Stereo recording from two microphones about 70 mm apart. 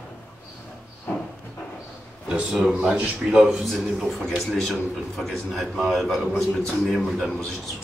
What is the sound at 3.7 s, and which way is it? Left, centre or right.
A man's voice, centre.